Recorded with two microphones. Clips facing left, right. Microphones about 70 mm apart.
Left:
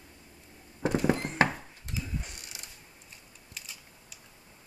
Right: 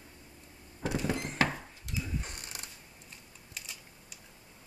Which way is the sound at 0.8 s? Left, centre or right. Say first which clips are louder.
Left 6 dB; left.